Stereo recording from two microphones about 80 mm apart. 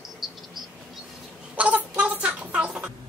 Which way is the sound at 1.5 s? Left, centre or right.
Centre.